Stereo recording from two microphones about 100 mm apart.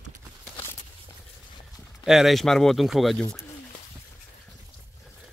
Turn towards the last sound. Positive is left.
turn(degrees=0)  # may be behind; listen again after turning